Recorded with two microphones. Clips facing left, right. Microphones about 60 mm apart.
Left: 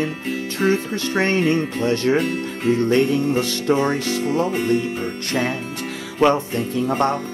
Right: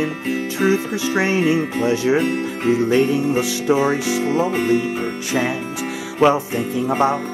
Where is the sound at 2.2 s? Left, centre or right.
Centre.